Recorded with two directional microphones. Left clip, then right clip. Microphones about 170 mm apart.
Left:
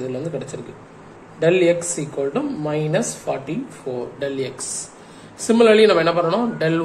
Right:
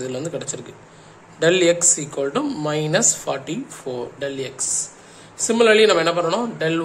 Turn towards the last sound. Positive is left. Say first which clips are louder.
# left 1 dB
turn(degrees=-10)  # may be behind; listen again after turning